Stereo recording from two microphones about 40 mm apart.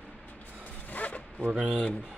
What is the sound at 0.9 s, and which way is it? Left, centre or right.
Zipper, left.